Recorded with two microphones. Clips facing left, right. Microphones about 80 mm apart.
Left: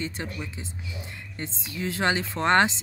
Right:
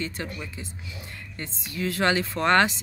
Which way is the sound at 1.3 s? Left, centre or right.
Left.